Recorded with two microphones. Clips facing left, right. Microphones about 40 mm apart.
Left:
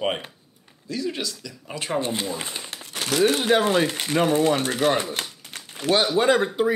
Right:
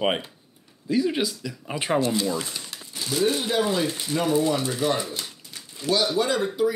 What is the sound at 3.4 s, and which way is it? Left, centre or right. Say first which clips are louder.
Speech: left 4 dB; left.